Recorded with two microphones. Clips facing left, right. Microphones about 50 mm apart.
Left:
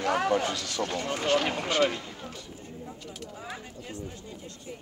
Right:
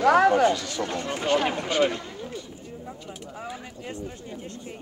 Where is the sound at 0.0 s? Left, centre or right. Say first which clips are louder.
Right 9 dB; right.